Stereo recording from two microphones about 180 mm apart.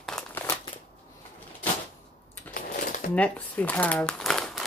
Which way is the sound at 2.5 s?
50° left (ahead or behind).